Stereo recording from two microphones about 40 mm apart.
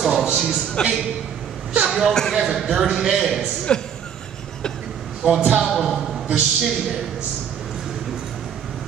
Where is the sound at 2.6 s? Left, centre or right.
Centre.